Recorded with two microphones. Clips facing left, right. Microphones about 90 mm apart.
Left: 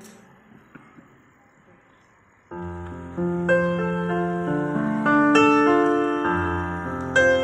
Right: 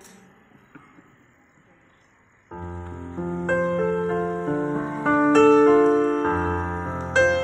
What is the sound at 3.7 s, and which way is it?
Music, 65° left (ahead or behind).